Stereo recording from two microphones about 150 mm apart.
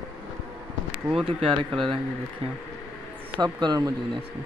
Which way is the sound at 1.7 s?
5° left (ahead or behind).